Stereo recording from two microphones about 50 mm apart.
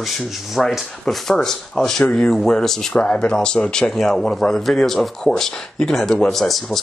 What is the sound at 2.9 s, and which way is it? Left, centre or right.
Speech, left.